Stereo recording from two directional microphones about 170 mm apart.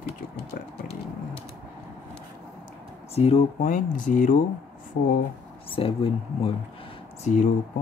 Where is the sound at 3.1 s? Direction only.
35° left (ahead or behind).